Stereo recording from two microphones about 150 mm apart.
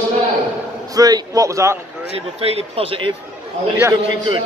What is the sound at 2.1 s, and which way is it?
Speech, 40° right (ahead or behind).